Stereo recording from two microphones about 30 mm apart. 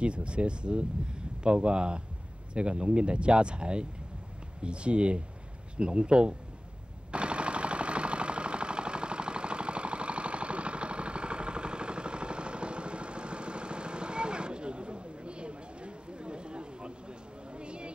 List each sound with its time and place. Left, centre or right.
0.0 s speech: right
7.1 s machine gun: right
17.5 s a sound: right